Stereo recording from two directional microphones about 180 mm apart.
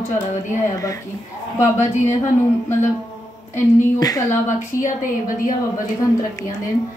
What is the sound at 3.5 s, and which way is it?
Speech, 20° left (ahead or behind).